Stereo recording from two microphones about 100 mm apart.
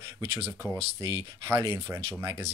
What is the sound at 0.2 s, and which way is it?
Speech, 25° right (ahead or behind).